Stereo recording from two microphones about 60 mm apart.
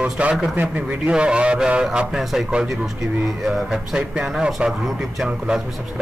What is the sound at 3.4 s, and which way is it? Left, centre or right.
A man's voice, centre.